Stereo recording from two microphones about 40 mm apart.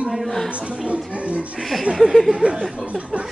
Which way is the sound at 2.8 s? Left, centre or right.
Right.